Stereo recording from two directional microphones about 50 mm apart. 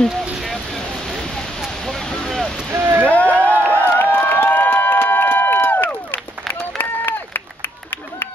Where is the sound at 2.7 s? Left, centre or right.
Right.